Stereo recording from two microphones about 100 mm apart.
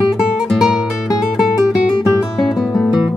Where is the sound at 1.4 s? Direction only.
Centre (ahead or behind).